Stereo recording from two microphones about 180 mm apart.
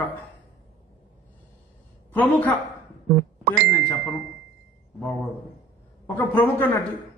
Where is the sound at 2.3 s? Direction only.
10° left (ahead or behind).